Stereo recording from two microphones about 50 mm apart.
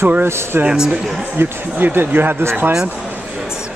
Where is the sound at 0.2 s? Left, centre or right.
Right.